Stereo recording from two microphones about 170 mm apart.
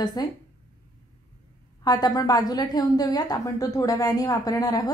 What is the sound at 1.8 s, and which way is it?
A woman's voice, 25° left (ahead or behind).